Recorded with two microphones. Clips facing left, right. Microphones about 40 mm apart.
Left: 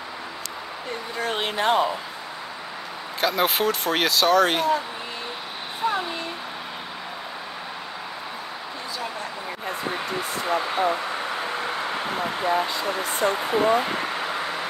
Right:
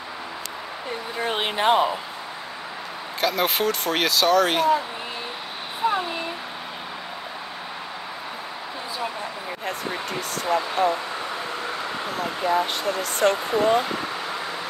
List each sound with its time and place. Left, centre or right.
1.1 s speech: centre
3.2 s speech: centre
5.9 s a sound: centre
10.4 s speech: left
11.6 s vehicle: left
12.8 s speech: left